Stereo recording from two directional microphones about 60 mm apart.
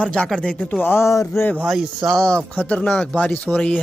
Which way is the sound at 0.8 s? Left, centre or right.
Left.